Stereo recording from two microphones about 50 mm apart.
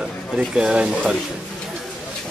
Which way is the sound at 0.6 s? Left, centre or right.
Centre.